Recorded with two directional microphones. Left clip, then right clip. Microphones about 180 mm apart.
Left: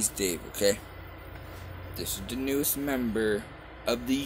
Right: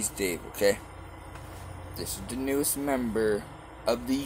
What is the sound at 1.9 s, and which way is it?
Speech, 55° left (ahead or behind).